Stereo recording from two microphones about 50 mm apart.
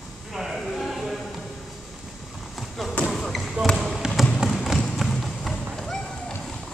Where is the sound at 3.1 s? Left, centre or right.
Centre.